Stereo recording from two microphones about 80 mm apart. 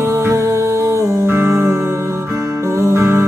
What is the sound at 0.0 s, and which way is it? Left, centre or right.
Music, right.